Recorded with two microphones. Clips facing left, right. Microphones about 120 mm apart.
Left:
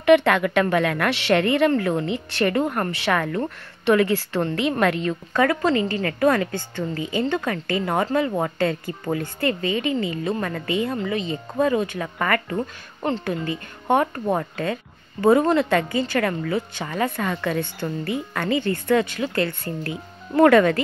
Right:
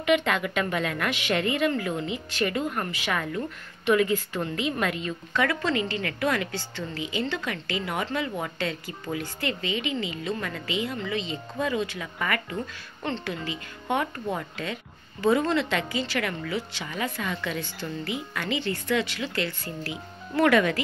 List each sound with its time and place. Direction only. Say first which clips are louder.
0.0 s a woman's voice: left 8 dB; 65° left (ahead or behind)
5.4 s a woman's voice: left 6 dB; 40° left (ahead or behind); by 11.1 s 55° left (ahead or behind)
11.5 s a woman's voice: left 7 dB; 45° left (ahead or behind)